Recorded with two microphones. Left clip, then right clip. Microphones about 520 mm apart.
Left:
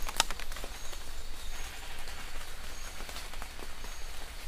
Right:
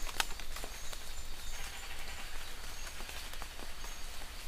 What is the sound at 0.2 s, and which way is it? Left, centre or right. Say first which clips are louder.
Horse: left 6 dB; left.